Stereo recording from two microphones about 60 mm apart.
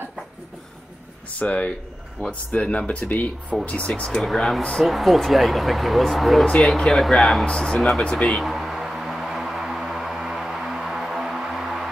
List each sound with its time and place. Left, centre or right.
1.4 s speech: left
4.1 s speech: centre
7.4 s speech: centre
8.3 s a sound: centre